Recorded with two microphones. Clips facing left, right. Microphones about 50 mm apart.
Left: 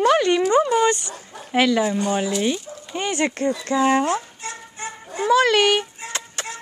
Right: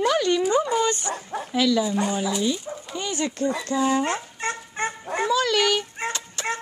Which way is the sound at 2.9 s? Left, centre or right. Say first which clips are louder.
Left 5 dB; left.